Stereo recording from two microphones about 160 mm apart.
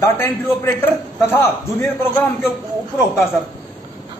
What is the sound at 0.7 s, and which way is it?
A man's voice, 15° left (ahead or behind).